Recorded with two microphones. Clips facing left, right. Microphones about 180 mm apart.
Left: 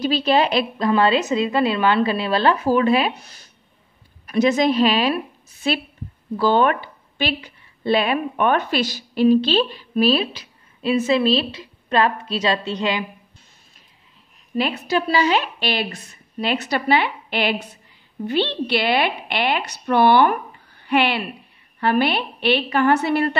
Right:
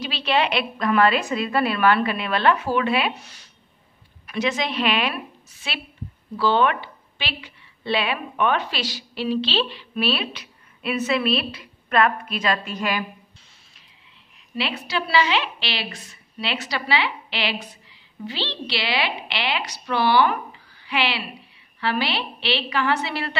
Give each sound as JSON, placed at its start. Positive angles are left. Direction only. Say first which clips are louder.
{"t": 0.0, "sound": "a woman's voice", "louder": "left 5 dB", "side_deg": 40}
{"t": 14.5, "sound": "a woman's voice", "louder": "left 6 dB", "side_deg": 45}